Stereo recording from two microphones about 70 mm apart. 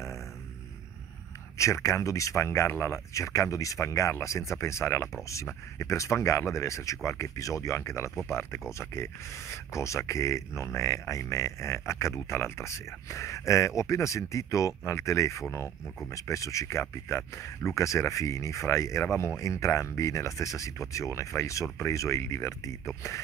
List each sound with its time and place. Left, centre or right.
1.6 s speech: left